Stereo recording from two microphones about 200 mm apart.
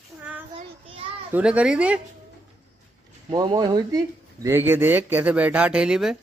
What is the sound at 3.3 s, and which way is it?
Speech, 20° right (ahead or behind).